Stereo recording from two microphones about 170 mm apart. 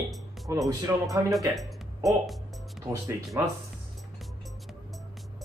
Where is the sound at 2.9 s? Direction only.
15° right (ahead or behind).